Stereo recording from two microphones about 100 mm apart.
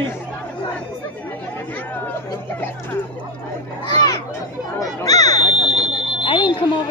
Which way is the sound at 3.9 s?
45° left (ahead or behind).